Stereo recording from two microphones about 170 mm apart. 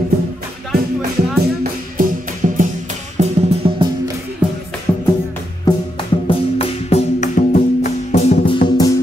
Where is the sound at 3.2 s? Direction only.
35° right (ahead or behind).